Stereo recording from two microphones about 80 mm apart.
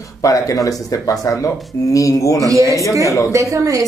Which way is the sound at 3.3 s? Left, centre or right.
Right.